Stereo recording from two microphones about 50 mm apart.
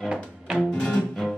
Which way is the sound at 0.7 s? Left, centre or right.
Centre.